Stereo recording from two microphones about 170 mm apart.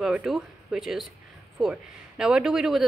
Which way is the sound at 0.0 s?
Centre (ahead or behind).